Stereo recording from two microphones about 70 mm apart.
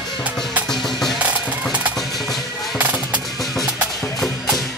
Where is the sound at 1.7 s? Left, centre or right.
Right.